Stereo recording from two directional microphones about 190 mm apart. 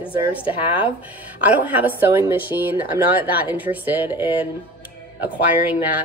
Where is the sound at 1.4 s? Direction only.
10° right (ahead or behind).